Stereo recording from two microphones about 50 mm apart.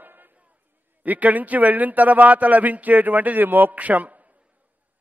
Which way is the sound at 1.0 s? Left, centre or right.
Right.